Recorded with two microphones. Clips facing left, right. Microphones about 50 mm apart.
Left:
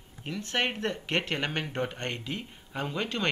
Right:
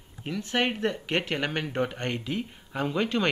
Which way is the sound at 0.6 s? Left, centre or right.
Centre.